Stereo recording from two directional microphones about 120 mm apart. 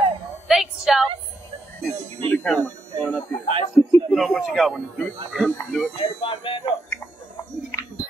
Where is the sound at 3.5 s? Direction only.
50° right (ahead or behind).